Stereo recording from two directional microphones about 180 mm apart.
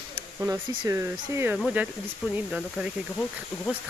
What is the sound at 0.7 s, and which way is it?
Speech, 20° right (ahead or behind).